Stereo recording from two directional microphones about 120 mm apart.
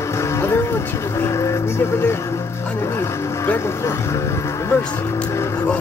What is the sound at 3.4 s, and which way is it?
Music, 20° left (ahead or behind).